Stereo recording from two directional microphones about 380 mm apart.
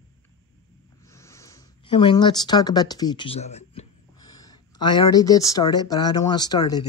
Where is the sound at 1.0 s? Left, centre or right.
Centre.